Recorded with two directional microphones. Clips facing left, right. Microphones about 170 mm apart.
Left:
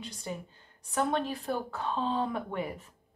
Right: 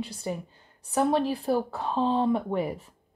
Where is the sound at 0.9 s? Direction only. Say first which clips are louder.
Right 6 dB; 35° right (ahead or behind).